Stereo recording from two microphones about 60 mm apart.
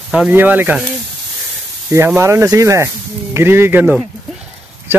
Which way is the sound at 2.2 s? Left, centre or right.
Right.